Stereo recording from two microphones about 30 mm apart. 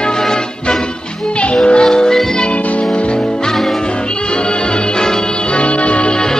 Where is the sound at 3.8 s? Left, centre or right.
Left.